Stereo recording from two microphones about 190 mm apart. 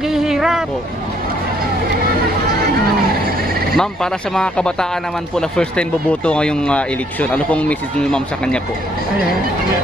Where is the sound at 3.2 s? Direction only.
50° right (ahead or behind).